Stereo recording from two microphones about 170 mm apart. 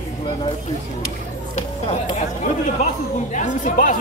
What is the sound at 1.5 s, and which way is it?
Speech, 45° left (ahead or behind).